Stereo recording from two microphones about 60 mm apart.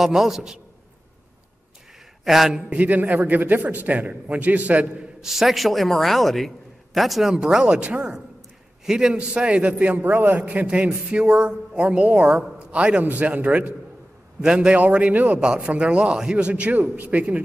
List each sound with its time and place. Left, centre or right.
0.0 s a man's voice: centre
2.2 s a man's voice: centre
2.7 s a man's voice: right
5.2 s a man's voice: centre
7.3 s a woman's voice: centre